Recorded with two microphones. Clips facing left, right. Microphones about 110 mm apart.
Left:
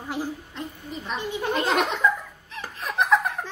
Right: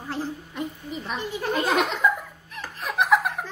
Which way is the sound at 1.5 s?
10° right (ahead or behind).